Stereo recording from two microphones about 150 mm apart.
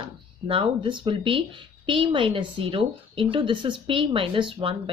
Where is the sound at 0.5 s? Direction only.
35° right (ahead or behind).